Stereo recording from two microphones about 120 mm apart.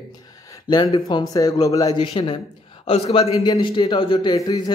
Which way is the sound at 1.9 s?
40° left (ahead or behind).